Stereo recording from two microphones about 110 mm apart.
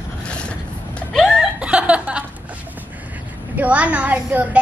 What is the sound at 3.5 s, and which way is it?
Speech, 15° right (ahead or behind).